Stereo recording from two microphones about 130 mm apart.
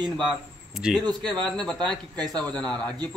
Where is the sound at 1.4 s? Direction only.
5° left (ahead or behind).